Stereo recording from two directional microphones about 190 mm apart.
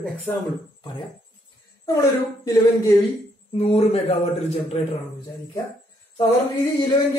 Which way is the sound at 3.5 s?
30° left (ahead or behind).